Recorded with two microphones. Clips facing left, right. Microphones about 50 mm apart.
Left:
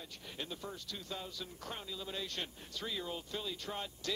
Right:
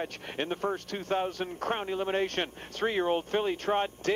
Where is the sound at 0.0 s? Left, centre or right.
Right.